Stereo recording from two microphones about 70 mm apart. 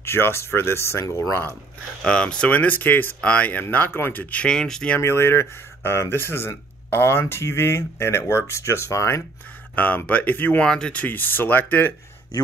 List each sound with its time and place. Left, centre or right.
0.0 s speech: left
2.0 s speech: centre
3.7 s speech: left; by 4.9 s centre
4.9 s speech: left
9.8 s speech: left
10.6 s speech: centre
11.1 s speech: left